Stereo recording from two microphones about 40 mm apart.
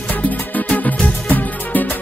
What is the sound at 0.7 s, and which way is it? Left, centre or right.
Music, left.